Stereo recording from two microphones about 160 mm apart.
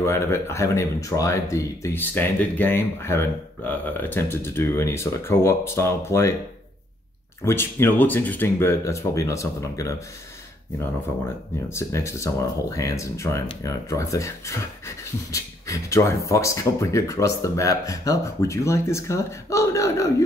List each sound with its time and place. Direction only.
0.0 s speech: 15° left (ahead or behind)
7.4 s speech: 15° left (ahead or behind)
11.7 s speech: 15° left (ahead or behind)